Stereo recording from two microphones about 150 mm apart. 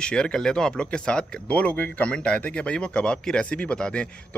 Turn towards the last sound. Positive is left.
turn(degrees=5)  # may be behind; listen again after turning